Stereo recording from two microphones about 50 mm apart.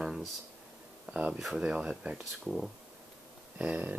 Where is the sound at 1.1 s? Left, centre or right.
Right.